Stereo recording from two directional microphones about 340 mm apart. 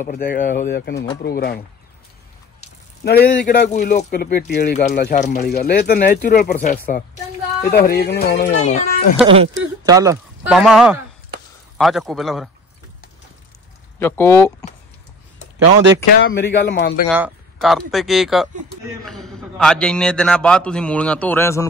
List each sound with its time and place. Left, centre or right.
0.0 s speech: left
2.6 s speech: left
9.1 s a man's voice: centre
13.9 s speech: centre
16.1 s speech: left
17.1 s a man's voice: centre